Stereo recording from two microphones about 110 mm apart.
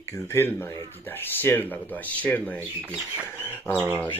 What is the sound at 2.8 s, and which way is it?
Speech, 15° right (ahead or behind).